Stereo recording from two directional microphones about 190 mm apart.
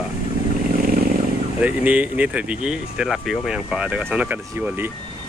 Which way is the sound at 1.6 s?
5° right (ahead or behind).